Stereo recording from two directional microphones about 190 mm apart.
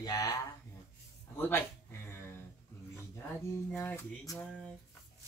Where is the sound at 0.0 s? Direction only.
20° left (ahead or behind).